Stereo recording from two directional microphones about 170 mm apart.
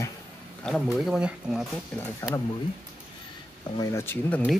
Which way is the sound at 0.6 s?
Centre (ahead or behind).